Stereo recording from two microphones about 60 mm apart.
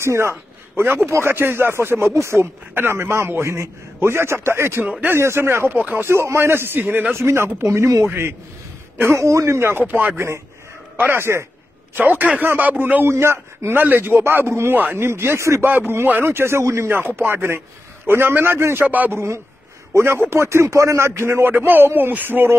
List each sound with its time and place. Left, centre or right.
0.0 s a man's voice: right
9.8 s speech: right
10.1 s a man's voice: right
11.0 s speech: right
13.0 s a man's voice: right
15.6 s speech: right
18.6 s a man's voice: right
18.9 s speech: right
19.1 s a man's voice: right
21.5 s speech: right